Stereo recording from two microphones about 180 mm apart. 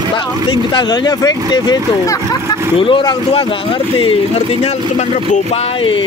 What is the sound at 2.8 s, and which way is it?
Speech, 30° left (ahead or behind).